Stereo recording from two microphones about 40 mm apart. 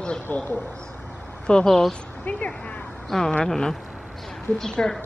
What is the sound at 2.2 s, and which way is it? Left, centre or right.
Speech, left.